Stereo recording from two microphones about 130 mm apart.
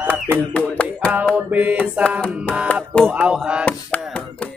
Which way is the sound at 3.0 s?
10° right (ahead or behind).